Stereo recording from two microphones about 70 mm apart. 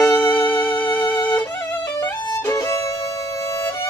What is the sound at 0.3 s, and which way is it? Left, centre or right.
Music, left.